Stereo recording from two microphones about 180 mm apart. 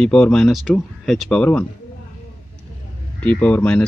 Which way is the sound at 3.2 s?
10° left (ahead or behind).